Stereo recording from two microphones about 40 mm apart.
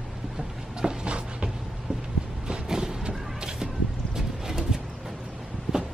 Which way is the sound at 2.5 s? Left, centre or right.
Centre.